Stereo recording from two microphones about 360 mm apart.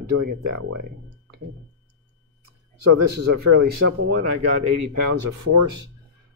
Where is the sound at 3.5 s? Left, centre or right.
Right.